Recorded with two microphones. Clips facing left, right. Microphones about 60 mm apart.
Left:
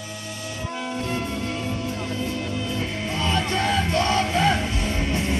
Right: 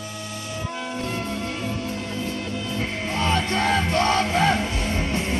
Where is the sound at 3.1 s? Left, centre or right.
Right.